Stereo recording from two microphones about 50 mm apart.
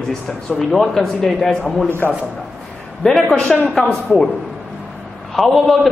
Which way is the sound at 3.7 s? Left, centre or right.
Centre.